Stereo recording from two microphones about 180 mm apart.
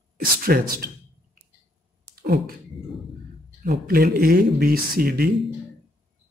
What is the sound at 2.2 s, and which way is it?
Speech, 55° right (ahead or behind).